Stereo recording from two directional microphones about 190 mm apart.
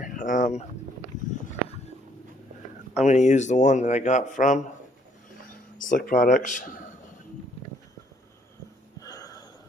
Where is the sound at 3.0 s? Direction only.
40° left (ahead or behind).